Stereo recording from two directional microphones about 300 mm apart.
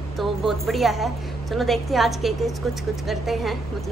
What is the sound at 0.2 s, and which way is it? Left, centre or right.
A woman's voice, centre.